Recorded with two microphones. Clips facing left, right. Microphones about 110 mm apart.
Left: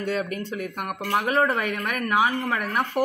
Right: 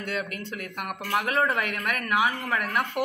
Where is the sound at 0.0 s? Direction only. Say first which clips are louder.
Left 5 dB; 45° left (ahead or behind).